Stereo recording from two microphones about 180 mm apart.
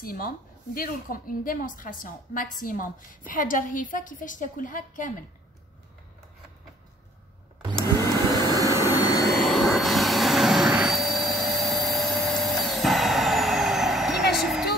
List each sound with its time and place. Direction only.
0.0 s a woman's voice: 55° left (ahead or behind)
7.8 s vacuum cleaner: 15° left (ahead or behind)
8.5 s jet engine: 20° right (ahead or behind)
9.0 s vehicle: 20° left (ahead or behind)
9.3 s jet engine: centre (ahead or behind)
14.3 s vehicle: centre (ahead or behind)